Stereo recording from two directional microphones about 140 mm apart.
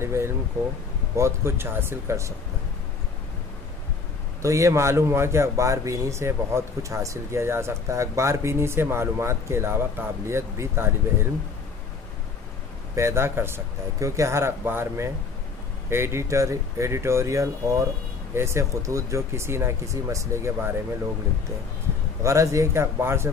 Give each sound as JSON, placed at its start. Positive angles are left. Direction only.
{"t": 0.0, "sound": "speech", "side_deg": -20}
{"t": 4.4, "sound": "speech", "side_deg": -20}
{"t": 12.9, "sound": "speech", "side_deg": -20}
{"t": 22.2, "sound": "speech", "side_deg": -20}